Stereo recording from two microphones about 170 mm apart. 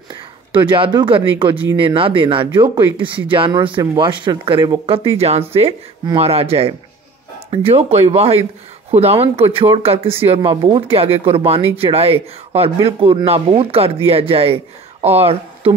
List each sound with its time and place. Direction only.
0.1 s speech: 30° right (ahead or behind)